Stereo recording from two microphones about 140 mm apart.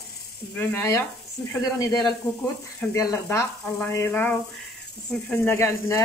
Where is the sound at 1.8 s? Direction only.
30° left (ahead or behind); by 5.6 s 5° left (ahead or behind).